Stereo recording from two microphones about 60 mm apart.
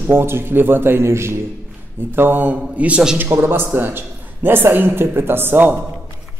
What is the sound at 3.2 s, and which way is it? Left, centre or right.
A man's voice, right.